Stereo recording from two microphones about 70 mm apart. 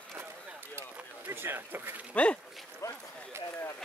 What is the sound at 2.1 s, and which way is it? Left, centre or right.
Speech, centre.